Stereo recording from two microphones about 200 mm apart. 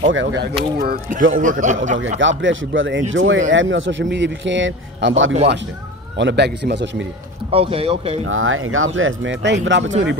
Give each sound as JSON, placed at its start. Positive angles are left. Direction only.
{"t": 0.1, "sound": "a man's voice", "side_deg": -65}
{"t": 2.1, "sound": "speech", "side_deg": -70}
{"t": 6.1, "sound": "a man's voice", "side_deg": -60}
{"t": 7.5, "sound": "speech", "side_deg": -30}
{"t": 8.3, "sound": "speech", "side_deg": -90}